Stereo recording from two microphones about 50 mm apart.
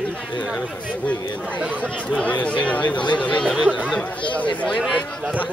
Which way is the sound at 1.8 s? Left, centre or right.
Left.